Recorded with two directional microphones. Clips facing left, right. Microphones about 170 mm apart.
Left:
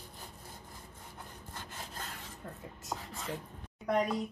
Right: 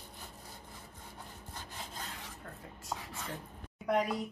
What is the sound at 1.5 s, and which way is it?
Rub, 50° left (ahead or behind).